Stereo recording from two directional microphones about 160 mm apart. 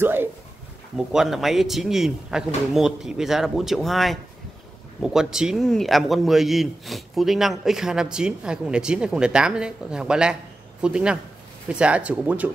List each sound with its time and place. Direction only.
0.0 s speech: 15° right (ahead or behind)
0.9 s a man's voice: centre (ahead or behind)